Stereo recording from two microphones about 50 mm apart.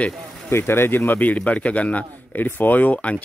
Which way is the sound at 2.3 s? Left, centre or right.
Left.